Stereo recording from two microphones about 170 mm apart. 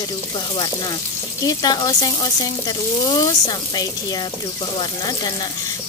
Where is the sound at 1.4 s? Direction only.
20° left (ahead or behind).